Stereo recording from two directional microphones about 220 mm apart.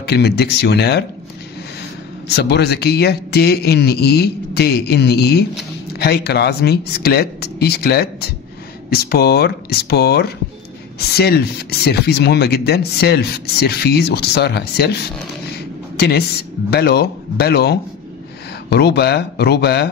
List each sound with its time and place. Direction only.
0.0 s a man's voice: 45° left (ahead or behind)
2.2 s a man's voice: 50° left (ahead or behind)
16.0 s a man's voice: 45° left (ahead or behind)